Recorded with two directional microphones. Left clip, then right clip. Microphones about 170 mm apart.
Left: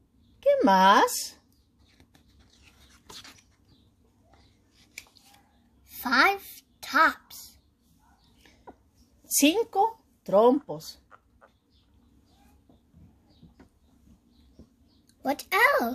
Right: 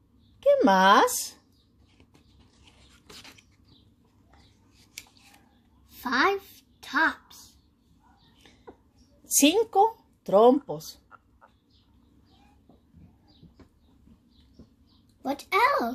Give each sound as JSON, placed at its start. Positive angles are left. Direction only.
{"t": 0.4, "sound": "speech", "side_deg": -5}
{"t": 5.9, "sound": "a woman's voice", "side_deg": 90}
{"t": 6.8, "sound": "a sound", "side_deg": 90}
{"t": 9.2, "sound": "speech", "side_deg": -10}
{"t": 15.2, "sound": "a child's voice", "side_deg": 50}